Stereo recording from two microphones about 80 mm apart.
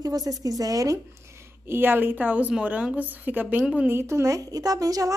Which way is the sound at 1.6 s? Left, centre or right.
Right.